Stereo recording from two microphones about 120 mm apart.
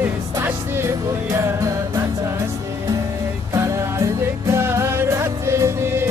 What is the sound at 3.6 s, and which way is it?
Music, 25° right (ahead or behind).